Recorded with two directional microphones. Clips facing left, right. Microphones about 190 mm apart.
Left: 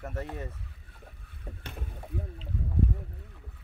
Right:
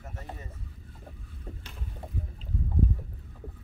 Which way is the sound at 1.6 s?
60° left (ahead or behind).